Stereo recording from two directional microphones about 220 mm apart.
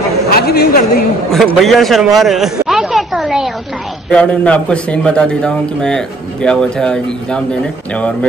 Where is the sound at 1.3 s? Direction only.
Centre (ahead or behind).